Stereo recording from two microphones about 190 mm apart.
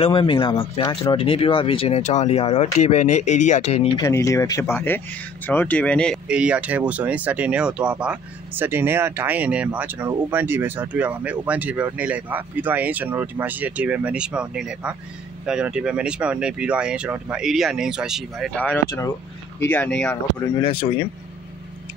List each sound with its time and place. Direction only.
0.0 s speech: 25° left (ahead or behind)
4.0 s speech: 15° left (ahead or behind)
6.2 s speech: 5° right (ahead or behind)
18.9 s speech: 15° left (ahead or behind)
20.4 s speech: 25° left (ahead or behind)